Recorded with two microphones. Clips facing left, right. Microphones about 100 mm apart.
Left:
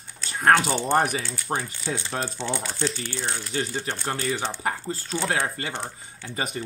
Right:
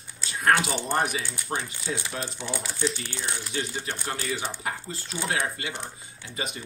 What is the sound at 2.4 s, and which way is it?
Speech, 15° right (ahead or behind).